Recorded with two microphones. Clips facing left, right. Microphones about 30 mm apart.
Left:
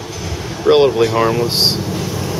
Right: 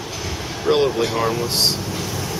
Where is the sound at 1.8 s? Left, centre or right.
Centre.